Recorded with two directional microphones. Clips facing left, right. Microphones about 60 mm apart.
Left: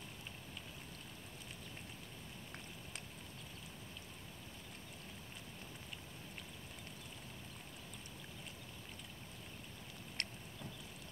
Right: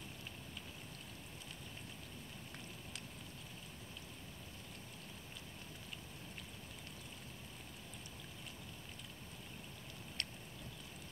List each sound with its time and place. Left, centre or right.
10.2 s boat: left